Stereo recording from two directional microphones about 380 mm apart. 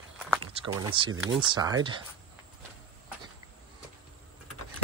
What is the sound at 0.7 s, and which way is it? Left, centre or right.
Speech, centre.